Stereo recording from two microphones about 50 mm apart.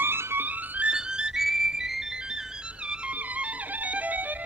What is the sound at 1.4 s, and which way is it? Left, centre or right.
Music, centre.